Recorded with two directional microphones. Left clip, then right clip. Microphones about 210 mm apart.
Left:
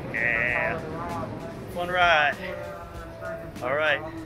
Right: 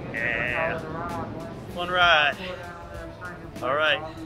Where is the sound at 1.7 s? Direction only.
10° right (ahead or behind).